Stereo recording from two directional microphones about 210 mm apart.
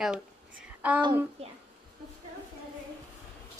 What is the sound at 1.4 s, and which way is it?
Speech, 30° right (ahead or behind).